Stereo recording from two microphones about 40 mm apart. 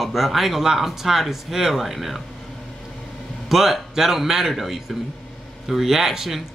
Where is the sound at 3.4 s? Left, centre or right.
Centre.